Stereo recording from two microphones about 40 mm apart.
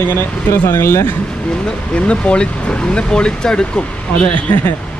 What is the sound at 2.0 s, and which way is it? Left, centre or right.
Speech, left.